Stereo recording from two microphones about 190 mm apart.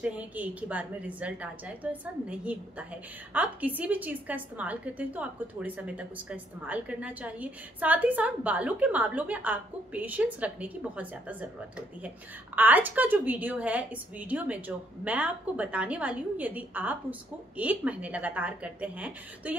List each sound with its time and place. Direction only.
0.0 s a woman's voice: 10° right (ahead or behind)
12.5 s a woman's voice: 10° right (ahead or behind)